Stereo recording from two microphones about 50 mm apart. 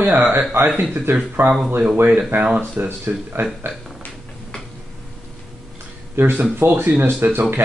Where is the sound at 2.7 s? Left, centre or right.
Right.